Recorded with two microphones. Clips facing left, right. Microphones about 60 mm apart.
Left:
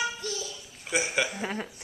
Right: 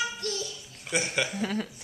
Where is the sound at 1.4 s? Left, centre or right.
Left.